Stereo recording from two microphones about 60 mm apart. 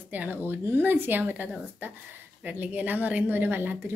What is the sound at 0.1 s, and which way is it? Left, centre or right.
A woman's voice, right.